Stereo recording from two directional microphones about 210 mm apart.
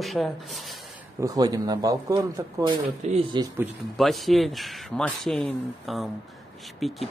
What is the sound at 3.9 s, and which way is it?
Speech, centre (ahead or behind).